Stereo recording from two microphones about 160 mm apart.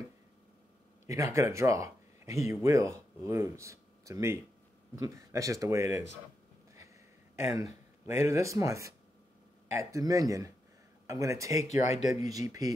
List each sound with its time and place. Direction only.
1.0 s speech: 20° right (ahead or behind)
7.4 s speech: 20° right (ahead or behind)
11.6 s speech: 45° left (ahead or behind)
12.1 s speech: 20° right (ahead or behind)